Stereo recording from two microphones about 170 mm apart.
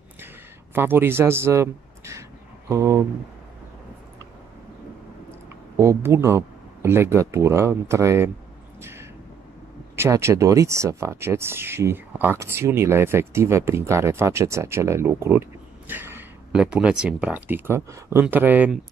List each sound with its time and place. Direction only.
0.7 s speech: 15° right (ahead or behind)
5.8 s speech: 15° right (ahead or behind)
9.9 s speech: 15° right (ahead or behind)